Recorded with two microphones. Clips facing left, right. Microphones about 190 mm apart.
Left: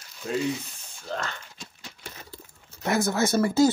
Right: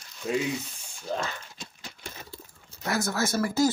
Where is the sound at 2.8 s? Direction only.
25° left (ahead or behind).